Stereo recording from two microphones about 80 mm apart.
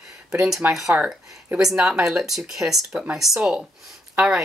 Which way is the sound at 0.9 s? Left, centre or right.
Centre.